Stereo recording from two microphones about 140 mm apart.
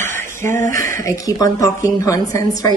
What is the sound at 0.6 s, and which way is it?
Speech, 70° right (ahead or behind).